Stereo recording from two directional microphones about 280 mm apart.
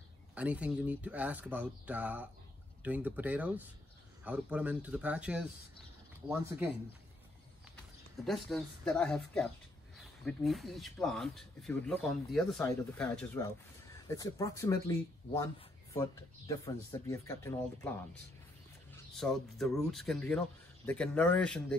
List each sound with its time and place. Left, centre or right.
0.3 s speech: centre
8.3 s speech: centre